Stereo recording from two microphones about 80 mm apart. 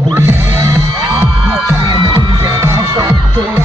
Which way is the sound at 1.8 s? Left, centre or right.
Right.